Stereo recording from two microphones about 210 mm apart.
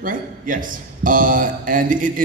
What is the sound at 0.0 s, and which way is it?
A man's voice, 40° right (ahead or behind).